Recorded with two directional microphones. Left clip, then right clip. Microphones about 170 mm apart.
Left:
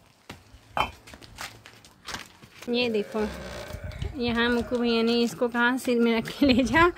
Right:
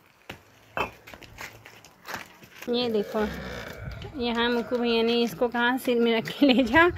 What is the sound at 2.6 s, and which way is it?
Speech, centre (ahead or behind).